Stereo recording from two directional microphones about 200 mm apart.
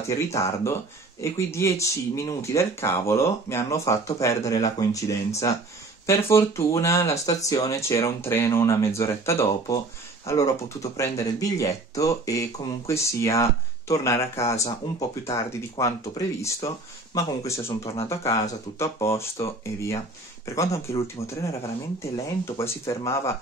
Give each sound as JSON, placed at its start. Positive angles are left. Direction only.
{"t": 0.1, "sound": "speech", "side_deg": 15}
{"t": 22.1, "sound": "speech", "side_deg": 15}